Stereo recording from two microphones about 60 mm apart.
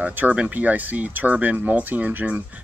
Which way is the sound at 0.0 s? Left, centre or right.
Right.